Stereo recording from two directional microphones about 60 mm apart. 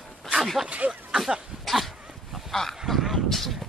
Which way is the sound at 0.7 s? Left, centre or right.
Right.